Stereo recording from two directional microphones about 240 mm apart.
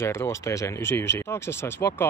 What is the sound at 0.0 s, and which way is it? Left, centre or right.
Speech, centre.